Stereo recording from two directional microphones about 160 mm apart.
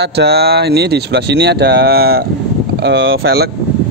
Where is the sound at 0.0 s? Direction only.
90° right; by 2.2 s 75° right (ahead or behind).